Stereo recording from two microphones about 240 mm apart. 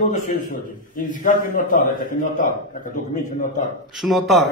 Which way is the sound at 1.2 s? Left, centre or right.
Left.